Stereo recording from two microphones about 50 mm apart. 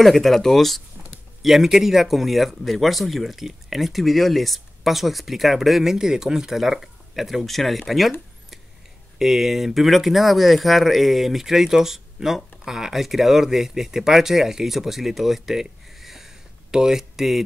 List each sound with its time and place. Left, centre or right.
0.0 s speech: centre
9.2 s speech: centre